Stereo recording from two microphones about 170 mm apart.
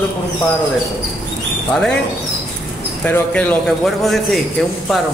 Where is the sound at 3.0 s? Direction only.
10° left (ahead or behind).